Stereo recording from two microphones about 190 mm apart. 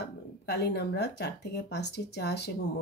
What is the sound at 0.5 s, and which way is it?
Speech, 60° left (ahead or behind).